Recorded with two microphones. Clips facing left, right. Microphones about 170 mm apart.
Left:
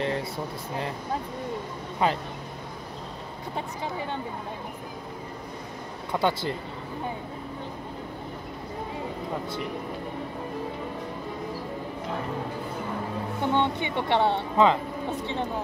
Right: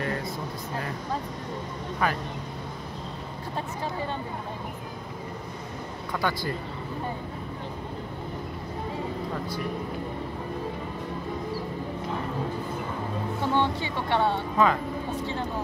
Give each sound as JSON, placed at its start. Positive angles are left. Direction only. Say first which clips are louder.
{"t": 2.0, "sound": "a woman's voice", "louder": "left 2 dB", "side_deg": 25}
{"t": 6.1, "sound": "a woman's voice", "louder": "left 3 dB", "side_deg": 25}
{"t": 13.4, "sound": "a woman's voice", "louder": "left 1 dB", "side_deg": 20}